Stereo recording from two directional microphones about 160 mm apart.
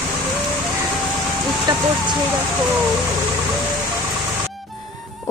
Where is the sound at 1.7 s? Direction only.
30° right (ahead or behind).